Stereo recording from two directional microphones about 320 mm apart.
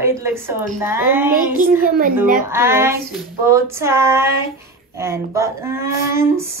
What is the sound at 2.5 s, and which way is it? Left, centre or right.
A man's voice, centre.